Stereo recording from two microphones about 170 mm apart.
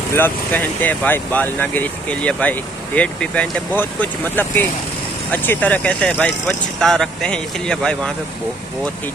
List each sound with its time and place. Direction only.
0.1 s speech: 10° left (ahead or behind)